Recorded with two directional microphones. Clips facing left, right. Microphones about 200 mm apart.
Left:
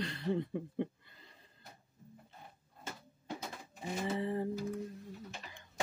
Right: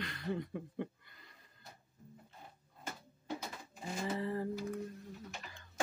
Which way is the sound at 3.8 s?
20° left (ahead or behind).